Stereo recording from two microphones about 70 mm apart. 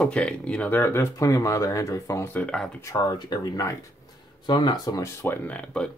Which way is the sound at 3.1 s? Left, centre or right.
Left.